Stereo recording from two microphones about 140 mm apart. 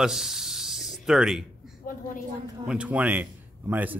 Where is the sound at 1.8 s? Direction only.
80° left.